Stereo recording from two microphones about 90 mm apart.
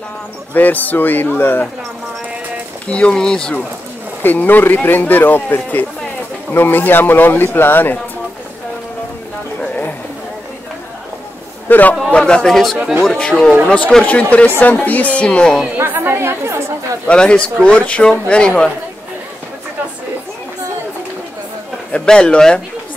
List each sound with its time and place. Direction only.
0.5 s speech: 20° left (ahead or behind)
2.9 s speech: 10° left (ahead or behind)
4.2 s speech: 20° left (ahead or behind)
9.6 s a sound: 20° left (ahead or behind)
11.7 s speech: 20° left (ahead or behind)
12.7 s speech: 15° right (ahead or behind)
13.0 s speech: 5° left (ahead or behind)
15.8 s a woman's voice: 25° right (ahead or behind)
17.1 s speech: 10° left (ahead or behind)
21.9 s speech: 10° left (ahead or behind)